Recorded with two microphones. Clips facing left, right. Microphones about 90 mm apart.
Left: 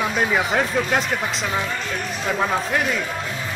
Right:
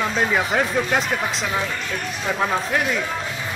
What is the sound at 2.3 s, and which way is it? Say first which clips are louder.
Speech: even; centre (ahead or behind).